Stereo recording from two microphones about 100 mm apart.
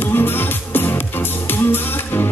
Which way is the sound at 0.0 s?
20° left (ahead or behind).